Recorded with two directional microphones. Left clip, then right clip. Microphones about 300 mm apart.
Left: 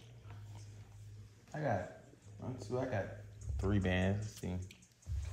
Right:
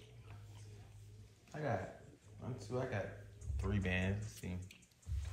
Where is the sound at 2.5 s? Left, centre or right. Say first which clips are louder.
Left 3 dB; left.